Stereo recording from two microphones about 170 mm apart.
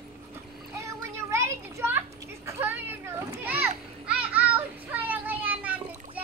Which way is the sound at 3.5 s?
10° right (ahead or behind).